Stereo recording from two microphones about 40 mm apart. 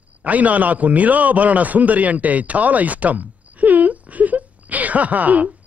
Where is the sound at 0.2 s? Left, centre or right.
Right.